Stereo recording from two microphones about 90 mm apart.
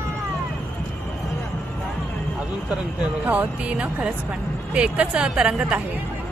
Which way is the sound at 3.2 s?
15° right (ahead or behind).